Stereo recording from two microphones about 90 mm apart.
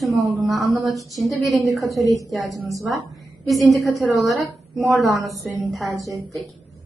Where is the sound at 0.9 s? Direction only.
40° right (ahead or behind).